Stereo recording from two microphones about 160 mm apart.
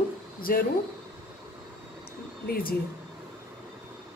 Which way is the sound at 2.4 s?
65° left (ahead or behind).